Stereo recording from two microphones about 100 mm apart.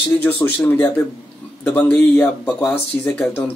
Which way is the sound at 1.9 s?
10° left (ahead or behind).